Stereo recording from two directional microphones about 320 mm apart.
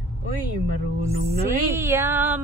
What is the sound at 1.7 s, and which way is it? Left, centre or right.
Music, centre.